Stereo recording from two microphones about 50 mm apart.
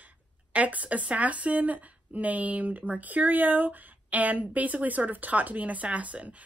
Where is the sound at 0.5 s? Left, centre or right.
Right.